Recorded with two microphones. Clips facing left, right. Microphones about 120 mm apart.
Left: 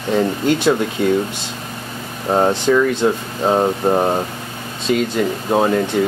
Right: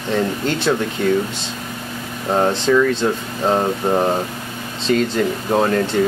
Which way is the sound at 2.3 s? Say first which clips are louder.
Left 1 dB; 15° left (ahead or behind).